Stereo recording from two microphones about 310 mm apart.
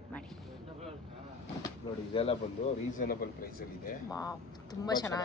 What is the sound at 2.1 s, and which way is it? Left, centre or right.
Speech, centre.